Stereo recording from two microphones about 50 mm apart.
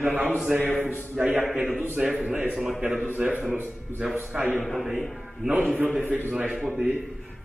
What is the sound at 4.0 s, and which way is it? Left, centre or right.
Mantra, right.